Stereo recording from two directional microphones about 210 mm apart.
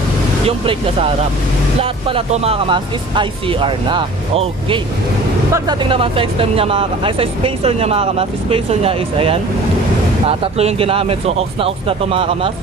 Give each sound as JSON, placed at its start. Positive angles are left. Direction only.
{"t": 0.5, "sound": "speech", "side_deg": -25}